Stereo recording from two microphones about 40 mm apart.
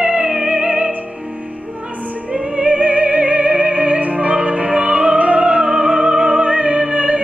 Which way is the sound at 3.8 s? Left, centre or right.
Right.